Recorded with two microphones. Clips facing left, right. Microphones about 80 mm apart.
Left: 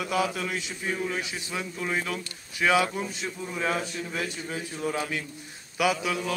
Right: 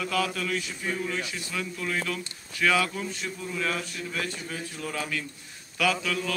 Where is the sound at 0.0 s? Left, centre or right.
Centre.